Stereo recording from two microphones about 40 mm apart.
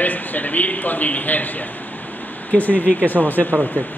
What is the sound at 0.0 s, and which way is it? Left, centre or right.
A man's voice, left.